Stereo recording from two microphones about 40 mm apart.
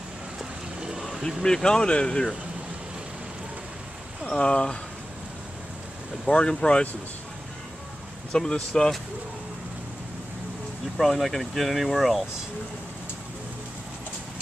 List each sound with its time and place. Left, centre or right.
0.4 s vehicle: centre
1.4 s speech: centre
4.2 s speech: centre
6.2 s speech: centre
8.3 s speech: centre
11.0 s speech: centre